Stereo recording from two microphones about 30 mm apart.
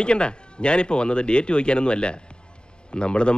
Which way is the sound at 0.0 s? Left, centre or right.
Left.